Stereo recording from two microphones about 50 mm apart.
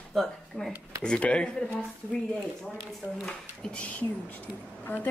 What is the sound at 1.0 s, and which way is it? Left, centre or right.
Speech, centre.